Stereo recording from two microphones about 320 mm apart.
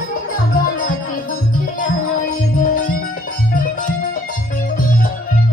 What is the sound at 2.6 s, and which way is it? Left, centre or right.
Music, left.